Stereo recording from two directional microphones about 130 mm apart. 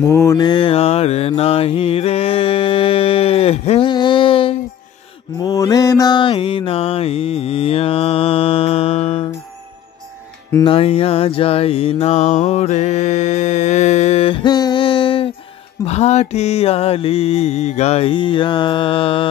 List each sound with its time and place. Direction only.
0.0 s mantra: 25° left (ahead or behind)
0.5 s mantra: 40° left (ahead or behind)
3.9 s a sound: 40° left (ahead or behind)
5.4 s mantra: 25° left (ahead or behind); by 9.2 s 50° left (ahead or behind)
10.6 s mantra: 45° left (ahead or behind)
15.8 s mantra: 55° left (ahead or behind)